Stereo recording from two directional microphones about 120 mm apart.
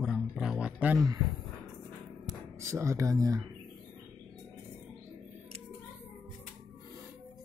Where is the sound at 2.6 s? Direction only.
25° right (ahead or behind).